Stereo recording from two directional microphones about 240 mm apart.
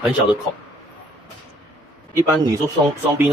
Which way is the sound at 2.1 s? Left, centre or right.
Centre.